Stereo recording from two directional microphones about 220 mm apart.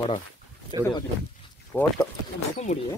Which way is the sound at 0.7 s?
25° right (ahead or behind).